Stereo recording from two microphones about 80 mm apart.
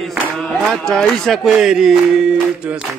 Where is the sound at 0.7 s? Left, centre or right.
Centre.